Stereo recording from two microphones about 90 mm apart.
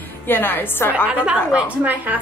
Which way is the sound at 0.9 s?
15° right (ahead or behind).